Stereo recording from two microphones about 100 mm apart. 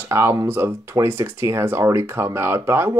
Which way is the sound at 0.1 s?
25° right (ahead or behind).